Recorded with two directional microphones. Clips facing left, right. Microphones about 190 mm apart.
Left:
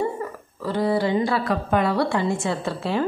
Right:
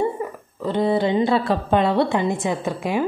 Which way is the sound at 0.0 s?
20° right (ahead or behind).